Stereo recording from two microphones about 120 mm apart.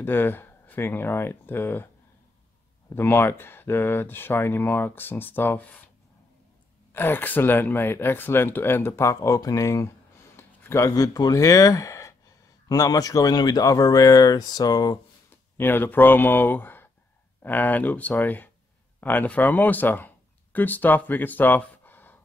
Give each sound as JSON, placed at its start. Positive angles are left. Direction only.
{"t": 0.0, "sound": "speech", "side_deg": 15}
{"t": 2.9, "sound": "speech", "side_deg": 20}
{"t": 6.9, "sound": "speech", "side_deg": 15}
{"t": 15.5, "sound": "speech", "side_deg": 20}